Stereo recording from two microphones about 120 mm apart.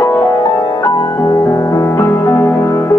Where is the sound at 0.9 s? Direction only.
30° left (ahead or behind).